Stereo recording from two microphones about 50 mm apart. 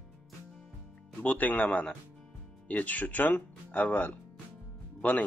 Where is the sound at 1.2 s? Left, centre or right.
Left.